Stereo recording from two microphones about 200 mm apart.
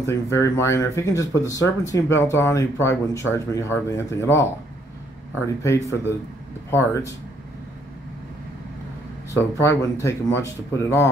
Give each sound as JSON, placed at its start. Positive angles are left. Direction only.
{"t": 0.0, "sound": "speech", "side_deg": 15}
{"t": 5.6, "sound": "speech", "side_deg": 15}
{"t": 9.3, "sound": "speech", "side_deg": 15}